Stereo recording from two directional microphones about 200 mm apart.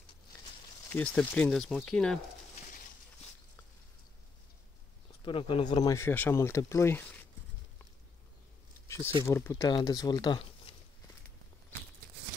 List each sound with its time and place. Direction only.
0.9 s speech: 10° left (ahead or behind)
5.2 s speech: 25° left (ahead or behind)
8.8 s a sound: 15° left (ahead or behind)
9.2 s speech: 15° left (ahead or behind)